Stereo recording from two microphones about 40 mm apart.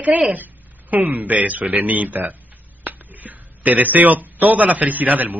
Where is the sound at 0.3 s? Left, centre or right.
Right.